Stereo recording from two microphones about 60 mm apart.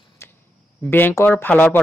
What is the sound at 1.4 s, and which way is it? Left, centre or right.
Speech, left.